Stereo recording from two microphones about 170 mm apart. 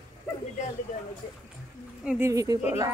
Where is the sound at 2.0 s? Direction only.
15° right (ahead or behind).